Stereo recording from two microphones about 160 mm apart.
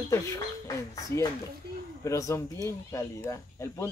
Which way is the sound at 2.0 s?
20° left (ahead or behind).